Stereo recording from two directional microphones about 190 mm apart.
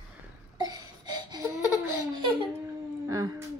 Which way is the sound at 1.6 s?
20° left (ahead or behind).